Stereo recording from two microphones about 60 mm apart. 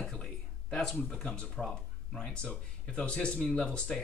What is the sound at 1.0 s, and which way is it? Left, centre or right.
Speech, centre.